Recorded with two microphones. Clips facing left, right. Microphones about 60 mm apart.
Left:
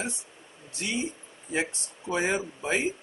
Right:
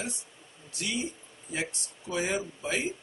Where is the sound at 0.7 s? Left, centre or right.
Left.